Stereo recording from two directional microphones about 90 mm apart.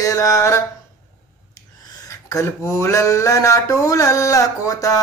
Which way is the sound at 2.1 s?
40° left (ahead or behind).